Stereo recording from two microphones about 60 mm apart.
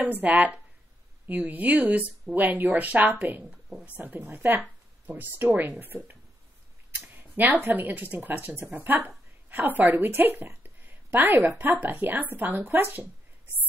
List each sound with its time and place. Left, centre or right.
0.0 s speech: right
4.6 s a sound: right
5.6 s speech: right